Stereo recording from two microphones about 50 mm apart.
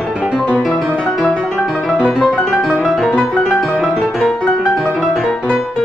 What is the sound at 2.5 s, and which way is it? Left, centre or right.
Music, centre.